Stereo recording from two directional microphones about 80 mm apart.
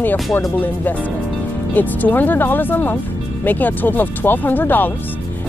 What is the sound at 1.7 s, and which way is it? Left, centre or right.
Speech, left.